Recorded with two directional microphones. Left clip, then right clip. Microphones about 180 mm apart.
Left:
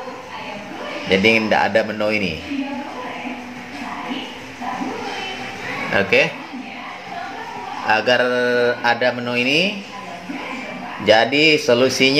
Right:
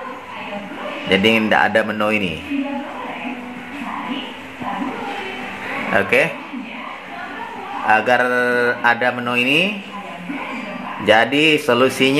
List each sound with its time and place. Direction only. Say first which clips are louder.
1.0 s speech: even; 10° left (ahead or behind)
5.9 s speech: even; 10° left (ahead or behind)
7.8 s speech: right 1 dB; 5° left (ahead or behind)
11.1 s speech: even; 15° left (ahead or behind)
11.6 s speech: even; centre (ahead or behind)